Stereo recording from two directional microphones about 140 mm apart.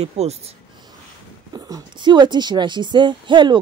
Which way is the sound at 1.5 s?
25° right (ahead or behind).